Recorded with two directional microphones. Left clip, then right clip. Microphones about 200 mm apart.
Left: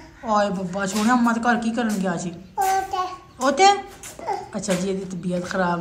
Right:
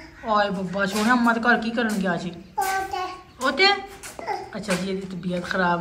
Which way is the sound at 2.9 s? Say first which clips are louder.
Left 3 dB; 15° left (ahead or behind).